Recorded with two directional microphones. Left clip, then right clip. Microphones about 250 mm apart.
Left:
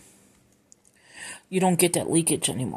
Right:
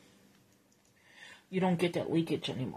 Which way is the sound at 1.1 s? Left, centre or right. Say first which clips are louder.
Left 9 dB; left.